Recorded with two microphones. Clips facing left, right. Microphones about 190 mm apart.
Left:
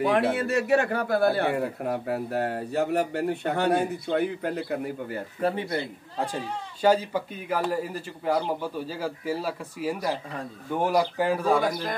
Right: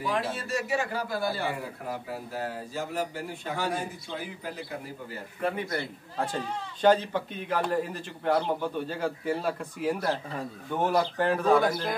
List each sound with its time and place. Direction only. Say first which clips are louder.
0.0 s a man's voice: left 7 dB; 65° left (ahead or behind)
5.4 s speech: left 3 dB; 30° left (ahead or behind); by 11.9 s 5° left (ahead or behind)